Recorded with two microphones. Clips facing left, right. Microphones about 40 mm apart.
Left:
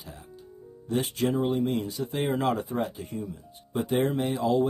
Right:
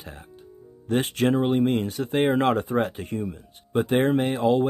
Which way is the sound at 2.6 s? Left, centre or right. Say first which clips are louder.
Right 5 dB; right.